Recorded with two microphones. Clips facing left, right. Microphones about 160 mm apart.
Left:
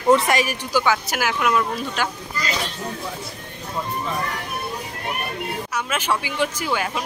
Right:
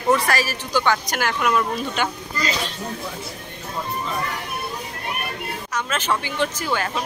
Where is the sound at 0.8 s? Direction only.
5° left (ahead or behind).